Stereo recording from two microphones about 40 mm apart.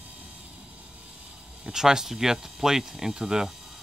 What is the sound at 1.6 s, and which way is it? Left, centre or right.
Speech, centre.